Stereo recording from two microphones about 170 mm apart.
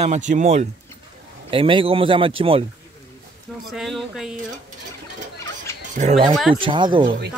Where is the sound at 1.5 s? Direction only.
30° right (ahead or behind).